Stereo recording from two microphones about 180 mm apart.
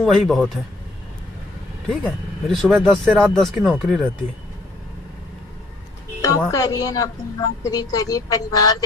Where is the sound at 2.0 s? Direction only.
Centre (ahead or behind).